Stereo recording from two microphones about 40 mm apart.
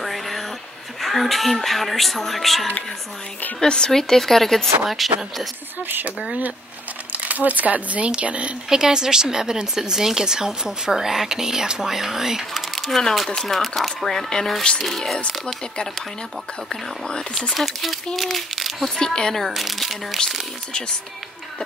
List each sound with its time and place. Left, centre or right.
0.0 s a sound: centre
1.0 s a woman's voice: centre
3.6 s a woman's voice: centre
7.1 s speech: right
8.6 s speech: centre
12.5 s speech: centre
13.3 s a woman's voice: centre
17.6 s a woman's voice: centre
18.9 s speech: centre
19.5 s a woman's voice: centre